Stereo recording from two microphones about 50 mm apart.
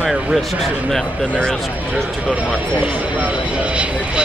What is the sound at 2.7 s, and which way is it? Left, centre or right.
Speech, right.